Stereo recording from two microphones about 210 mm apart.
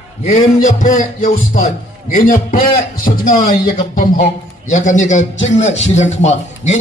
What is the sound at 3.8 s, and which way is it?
A man's voice, 40° left (ahead or behind).